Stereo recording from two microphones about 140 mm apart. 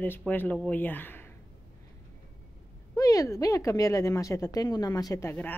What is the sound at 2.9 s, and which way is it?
Speech, 25° left (ahead or behind).